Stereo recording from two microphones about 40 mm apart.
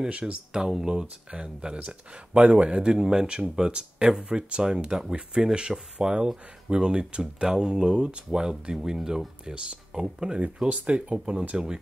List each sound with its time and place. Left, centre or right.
0.1 s speech: right
10.7 s speech: right